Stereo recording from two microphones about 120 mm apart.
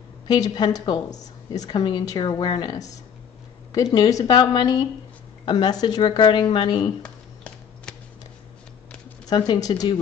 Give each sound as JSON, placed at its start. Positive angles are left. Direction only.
{"t": 0.3, "sound": "a woman's voice", "side_deg": 35}
{"t": 7.0, "sound": "a sound", "side_deg": 10}
{"t": 9.3, "sound": "a woman's voice", "side_deg": 30}